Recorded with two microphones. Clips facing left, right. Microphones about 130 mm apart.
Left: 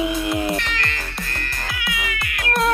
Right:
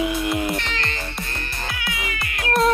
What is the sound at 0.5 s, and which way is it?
Music, 25° right (ahead or behind).